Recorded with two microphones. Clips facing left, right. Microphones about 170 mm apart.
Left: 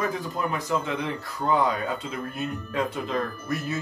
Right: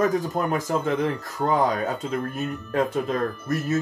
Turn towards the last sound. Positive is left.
turn(degrees=-45)  # may be behind; listen again after turning